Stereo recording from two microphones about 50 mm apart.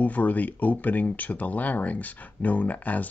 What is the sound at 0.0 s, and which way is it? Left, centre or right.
Speech, left.